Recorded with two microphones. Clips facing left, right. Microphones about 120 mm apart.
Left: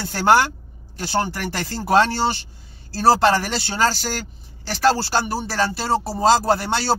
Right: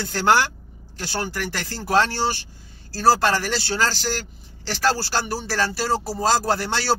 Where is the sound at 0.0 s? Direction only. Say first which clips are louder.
Left 3 dB; 25° left (ahead or behind).